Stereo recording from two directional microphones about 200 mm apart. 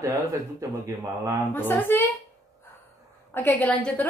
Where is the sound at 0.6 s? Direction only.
15° right (ahead or behind).